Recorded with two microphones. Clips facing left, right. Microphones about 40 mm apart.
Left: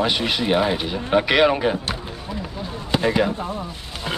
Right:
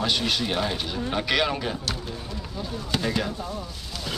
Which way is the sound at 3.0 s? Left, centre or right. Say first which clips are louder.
Left 8 dB; left.